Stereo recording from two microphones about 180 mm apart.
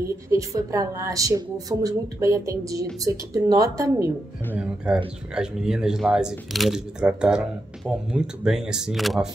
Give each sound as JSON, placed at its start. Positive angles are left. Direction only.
{"t": 0.0, "sound": "a woman's voice", "side_deg": -15}
{"t": 4.6, "sound": "speech", "side_deg": -5}